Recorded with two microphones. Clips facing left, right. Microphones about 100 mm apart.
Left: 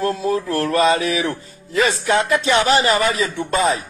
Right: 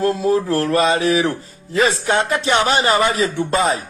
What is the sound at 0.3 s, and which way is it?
Speech, 35° right (ahead or behind).